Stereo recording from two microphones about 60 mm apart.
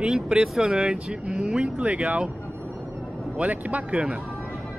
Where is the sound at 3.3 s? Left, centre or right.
Right.